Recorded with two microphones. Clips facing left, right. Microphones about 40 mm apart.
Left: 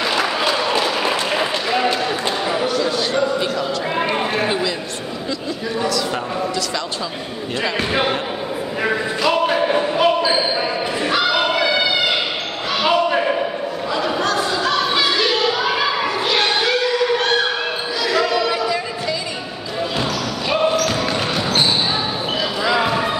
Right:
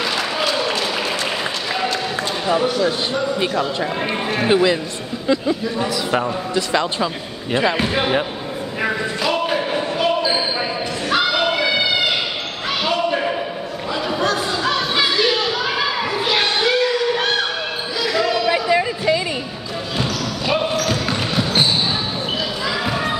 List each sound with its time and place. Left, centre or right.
0.0 s applause: centre
1.0 s a sound: centre
5.8 s a man's voice: right
8.8 s basketball bounce: centre
11.2 s crowd: centre
12.8 s basketball bounce: centre
14.0 s a sound: centre
18.0 s basketball bounce: centre
18.5 s a sound: right
20.0 s basketball bounce: centre
22.7 s basketball bounce: centre